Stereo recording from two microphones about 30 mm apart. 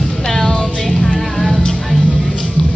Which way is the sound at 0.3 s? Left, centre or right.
Centre.